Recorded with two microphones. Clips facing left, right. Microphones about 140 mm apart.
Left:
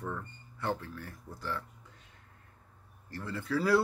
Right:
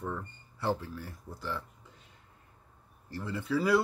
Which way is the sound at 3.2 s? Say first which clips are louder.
Right 2 dB; 15° right (ahead or behind).